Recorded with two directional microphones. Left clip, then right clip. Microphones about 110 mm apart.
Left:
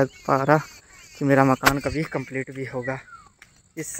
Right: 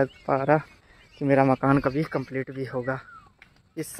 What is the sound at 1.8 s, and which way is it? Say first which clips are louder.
Speech: right 1 dB; 15° right (ahead or behind).